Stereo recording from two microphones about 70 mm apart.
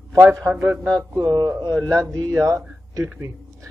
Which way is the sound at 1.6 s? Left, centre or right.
Right.